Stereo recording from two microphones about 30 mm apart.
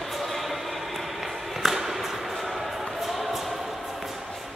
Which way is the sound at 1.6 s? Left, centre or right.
Centre.